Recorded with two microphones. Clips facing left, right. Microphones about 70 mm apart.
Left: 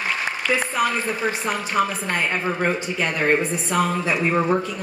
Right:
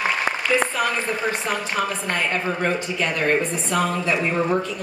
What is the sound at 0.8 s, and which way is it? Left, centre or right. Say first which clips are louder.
A woman's voice: left 1 dB; centre.